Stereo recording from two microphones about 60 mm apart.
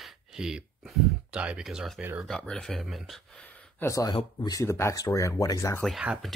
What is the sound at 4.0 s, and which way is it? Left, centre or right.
Speech, left.